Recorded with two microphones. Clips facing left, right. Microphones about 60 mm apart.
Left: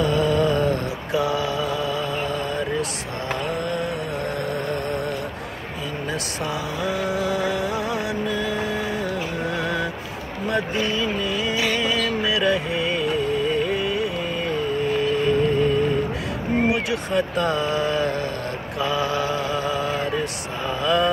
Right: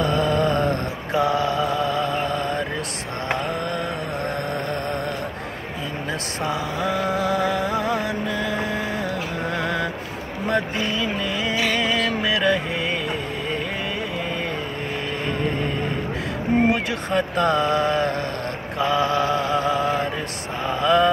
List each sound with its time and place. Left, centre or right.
0.0 s mantra: right
6.4 s music: right
10.5 s a sound: right
15.0 s vehicle: right
17.1 s speech: right
18.8 s mantra: right
20.6 s a sound: right